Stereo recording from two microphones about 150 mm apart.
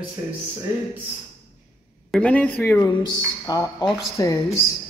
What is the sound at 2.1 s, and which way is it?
Speech, 10° left (ahead or behind).